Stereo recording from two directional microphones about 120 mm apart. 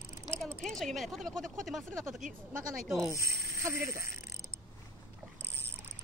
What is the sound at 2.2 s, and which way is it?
Speech, 90° right.